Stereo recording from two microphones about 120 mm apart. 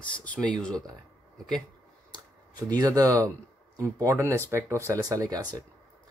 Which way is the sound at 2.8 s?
30° right (ahead or behind).